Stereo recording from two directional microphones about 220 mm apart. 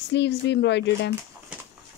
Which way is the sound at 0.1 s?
50° left (ahead or behind).